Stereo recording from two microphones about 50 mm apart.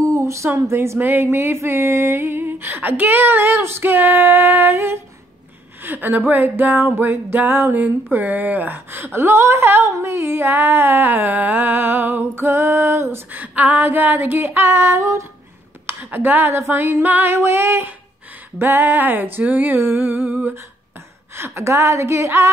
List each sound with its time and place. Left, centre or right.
0.0 s a sound: right
0.6 s a woman's voice: right
0.9 s music: right
4.7 s female singing: right
5.8 s music: right
13.3 s music: right
16.0 s speech: right
16.4 s female singing: right
16.7 s music: right
17.4 s female singing: right
18.6 s music: right
21.4 s a woman's voice: right